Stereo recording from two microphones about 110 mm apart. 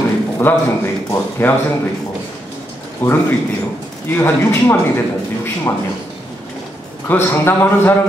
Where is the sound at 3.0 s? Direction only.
15° left (ahead or behind).